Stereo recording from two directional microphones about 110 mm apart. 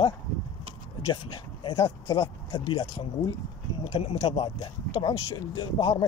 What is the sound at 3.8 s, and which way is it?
Speech, 60° left (ahead or behind).